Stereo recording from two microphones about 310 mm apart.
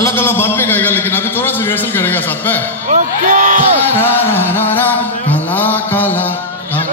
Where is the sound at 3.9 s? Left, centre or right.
Centre.